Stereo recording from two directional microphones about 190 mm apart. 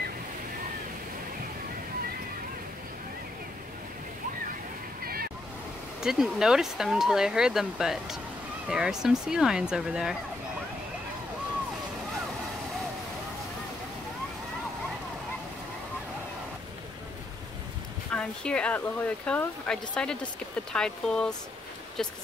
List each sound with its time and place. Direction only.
5.0 s vehicle: 50° right (ahead or behind)
6.0 s speech: 5° right (ahead or behind)
18.1 s speech: 5° left (ahead or behind)